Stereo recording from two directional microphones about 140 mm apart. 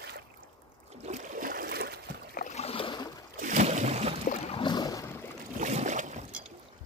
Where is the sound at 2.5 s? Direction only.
45° left (ahead or behind).